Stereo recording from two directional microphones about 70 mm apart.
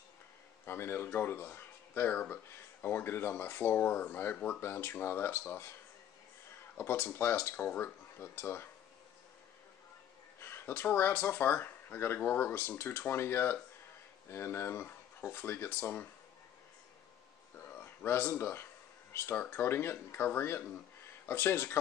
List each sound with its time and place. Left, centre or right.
0.7 s speech: left
6.8 s speech: left
10.4 s speech: left
18.0 s speech: left